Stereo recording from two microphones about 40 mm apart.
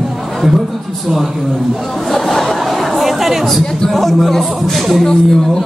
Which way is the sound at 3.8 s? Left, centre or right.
Centre.